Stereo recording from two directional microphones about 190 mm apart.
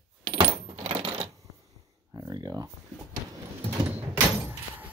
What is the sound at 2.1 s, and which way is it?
Speech, 20° right (ahead or behind).